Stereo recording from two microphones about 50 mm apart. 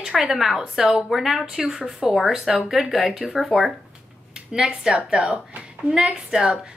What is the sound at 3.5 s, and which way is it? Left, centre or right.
A woman's voice, centre.